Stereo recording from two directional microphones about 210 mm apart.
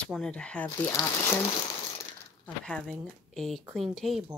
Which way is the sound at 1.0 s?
20° left (ahead or behind).